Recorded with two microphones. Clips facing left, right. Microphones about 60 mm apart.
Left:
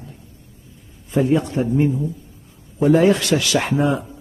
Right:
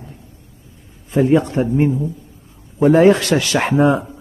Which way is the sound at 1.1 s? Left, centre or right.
Right.